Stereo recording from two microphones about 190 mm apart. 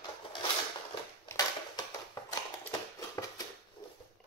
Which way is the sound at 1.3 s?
20° left (ahead or behind).